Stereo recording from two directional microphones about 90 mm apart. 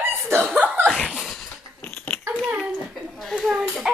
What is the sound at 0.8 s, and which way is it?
Laughter, 5° left (ahead or behind).